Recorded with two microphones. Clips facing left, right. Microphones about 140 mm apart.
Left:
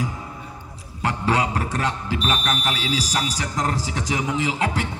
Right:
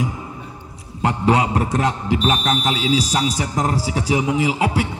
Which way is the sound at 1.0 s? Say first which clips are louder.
Right 5 dB; 15° right (ahead or behind).